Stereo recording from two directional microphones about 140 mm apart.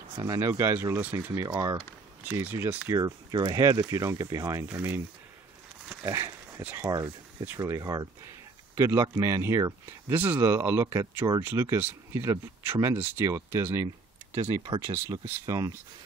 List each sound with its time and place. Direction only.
0.2 s speech: 25° right (ahead or behind)
2.2 s speech: 15° right (ahead or behind)
2.9 s speech: 25° right (ahead or behind)
5.9 s a sound: 20° right (ahead or behind)
7.4 s speech: 20° right (ahead or behind)
14.6 s speech: 35° right (ahead or behind)
14.9 s speech: 15° right (ahead or behind)